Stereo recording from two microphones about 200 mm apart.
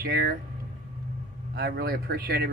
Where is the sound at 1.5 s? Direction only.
50° right (ahead or behind).